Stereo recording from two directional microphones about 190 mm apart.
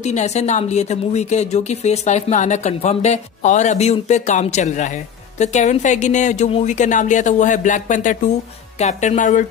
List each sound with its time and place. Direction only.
0.0 s speech: 35° left (ahead or behind)